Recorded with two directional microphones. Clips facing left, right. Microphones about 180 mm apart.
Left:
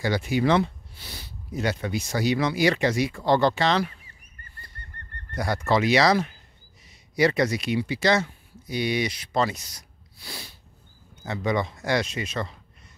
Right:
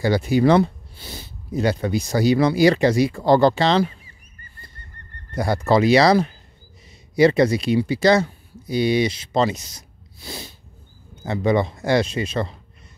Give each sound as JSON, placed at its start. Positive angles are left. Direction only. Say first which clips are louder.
{"t": 0.0, "sound": "speech", "louder": "right 6 dB", "side_deg": -35}
{"t": 5.3, "sound": "speech", "louder": "right 5 dB", "side_deg": -30}